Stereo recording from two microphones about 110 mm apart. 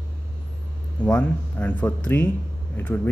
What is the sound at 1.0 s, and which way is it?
Speech, 15° left (ahead or behind).